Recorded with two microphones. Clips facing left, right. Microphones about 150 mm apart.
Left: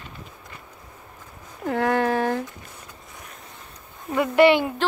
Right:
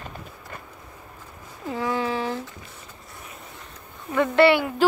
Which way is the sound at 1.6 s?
60° left (ahead or behind).